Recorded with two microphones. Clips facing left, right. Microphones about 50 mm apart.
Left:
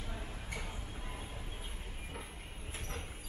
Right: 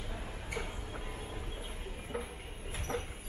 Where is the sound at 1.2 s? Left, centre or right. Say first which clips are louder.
Right 4 dB; right.